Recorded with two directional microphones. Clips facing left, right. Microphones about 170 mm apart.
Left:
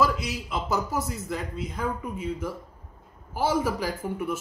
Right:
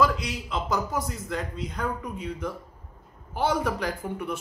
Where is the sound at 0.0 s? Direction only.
10° left (ahead or behind).